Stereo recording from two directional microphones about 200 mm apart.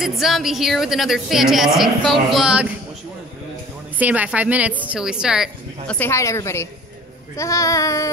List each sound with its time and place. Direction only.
0.0 s a woman's voice: centre (ahead or behind)
4.0 s a woman's voice: 5° right (ahead or behind)
5.9 s a woman's voice: 10° left (ahead or behind)